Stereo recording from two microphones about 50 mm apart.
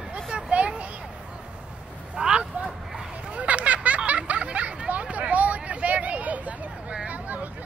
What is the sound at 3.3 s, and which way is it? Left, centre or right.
Hubbub, right.